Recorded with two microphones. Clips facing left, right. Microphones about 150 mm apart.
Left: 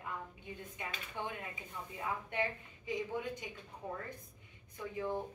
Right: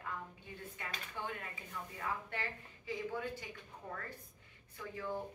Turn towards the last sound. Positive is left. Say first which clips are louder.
# left 3 dB
turn(degrees=20)  # may be behind; listen again after turning